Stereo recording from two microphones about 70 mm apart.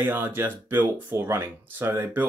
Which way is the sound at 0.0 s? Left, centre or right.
Right.